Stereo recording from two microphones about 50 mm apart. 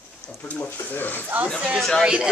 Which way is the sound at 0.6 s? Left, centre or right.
Left.